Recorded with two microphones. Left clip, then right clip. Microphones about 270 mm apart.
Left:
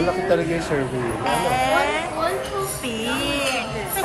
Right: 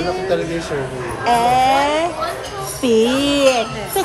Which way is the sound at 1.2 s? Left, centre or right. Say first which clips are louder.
Right 8 dB; centre.